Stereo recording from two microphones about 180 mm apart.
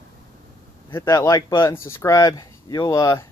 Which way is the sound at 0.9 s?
20° left (ahead or behind).